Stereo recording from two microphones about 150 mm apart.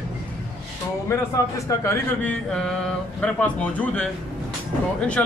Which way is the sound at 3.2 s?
10° left (ahead or behind).